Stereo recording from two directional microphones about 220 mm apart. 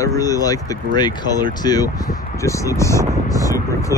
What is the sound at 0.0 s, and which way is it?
Speech, 15° left (ahead or behind).